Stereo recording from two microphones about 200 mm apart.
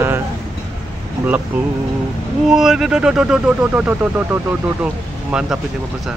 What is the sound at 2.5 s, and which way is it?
Speech, centre (ahead or behind).